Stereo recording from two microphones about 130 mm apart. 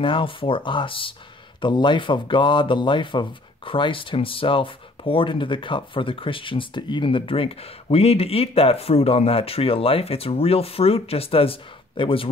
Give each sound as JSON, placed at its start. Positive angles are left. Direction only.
{"t": 0.0, "sound": "speech", "side_deg": 40}